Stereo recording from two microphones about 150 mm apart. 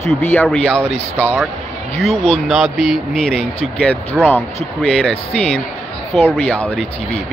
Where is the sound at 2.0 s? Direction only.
45° left (ahead or behind).